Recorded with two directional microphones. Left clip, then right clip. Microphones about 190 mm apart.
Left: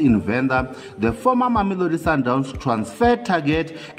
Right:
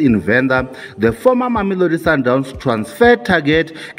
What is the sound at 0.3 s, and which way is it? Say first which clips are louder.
A man's voice: right 6 dB; 20° right (ahead or behind).